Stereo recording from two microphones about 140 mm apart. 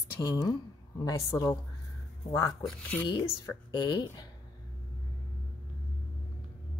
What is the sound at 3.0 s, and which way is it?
Speech, 30° left (ahead or behind).